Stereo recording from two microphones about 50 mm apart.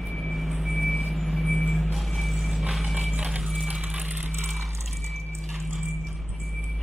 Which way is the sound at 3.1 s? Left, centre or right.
Right.